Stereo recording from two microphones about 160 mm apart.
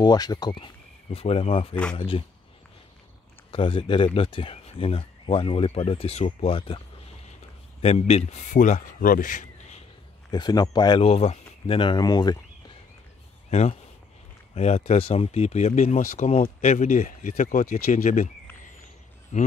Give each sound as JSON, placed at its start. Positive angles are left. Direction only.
{"t": 0.0, "sound": "speech", "side_deg": 25}
{"t": 1.1, "sound": "speech", "side_deg": 40}
{"t": 3.5, "sound": "speech", "side_deg": 35}
{"t": 7.8, "sound": "speech", "side_deg": 40}
{"t": 10.3, "sound": "speech", "side_deg": 25}
{"t": 13.5, "sound": "speech", "side_deg": 40}
{"t": 19.3, "sound": "speech", "side_deg": 50}